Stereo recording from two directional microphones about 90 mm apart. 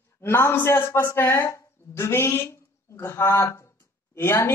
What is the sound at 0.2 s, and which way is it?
Speech, 25° left (ahead or behind).